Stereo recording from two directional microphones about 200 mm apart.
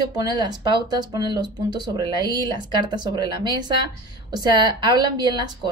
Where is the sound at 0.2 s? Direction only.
20° right (ahead or behind).